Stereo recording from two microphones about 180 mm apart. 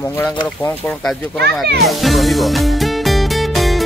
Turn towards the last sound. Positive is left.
turn(degrees=0)  # may be behind; listen again after turning